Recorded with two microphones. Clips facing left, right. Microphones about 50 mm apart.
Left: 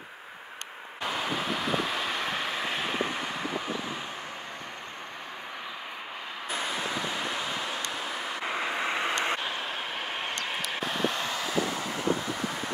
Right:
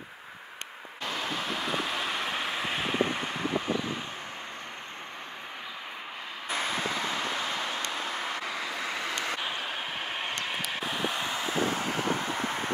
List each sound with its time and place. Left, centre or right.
1.0 s vehicle: centre
7.2 s vehicle: centre
8.5 s vehicle: left
9.4 s vehicle: centre
11.2 s vehicle: right